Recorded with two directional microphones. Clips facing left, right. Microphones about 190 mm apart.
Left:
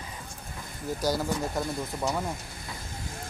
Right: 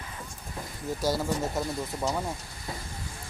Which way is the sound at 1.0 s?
Centre (ahead or behind).